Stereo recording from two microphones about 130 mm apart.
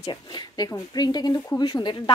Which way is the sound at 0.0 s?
35° left (ahead or behind).